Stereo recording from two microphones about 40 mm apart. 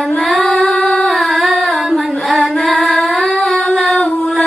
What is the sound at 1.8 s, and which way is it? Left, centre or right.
Singing, centre.